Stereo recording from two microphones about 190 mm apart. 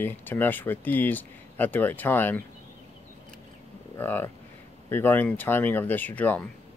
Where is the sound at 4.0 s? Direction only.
10° left (ahead or behind).